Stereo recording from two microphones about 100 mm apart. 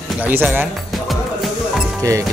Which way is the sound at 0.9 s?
Centre (ahead or behind).